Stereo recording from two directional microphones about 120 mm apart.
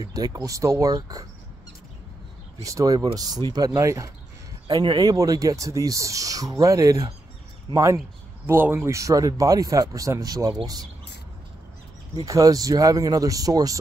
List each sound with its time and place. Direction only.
0.0 s speech: 30° right (ahead or behind)
2.6 s speech: 30° right (ahead or behind)
12.3 s speech: 30° right (ahead or behind)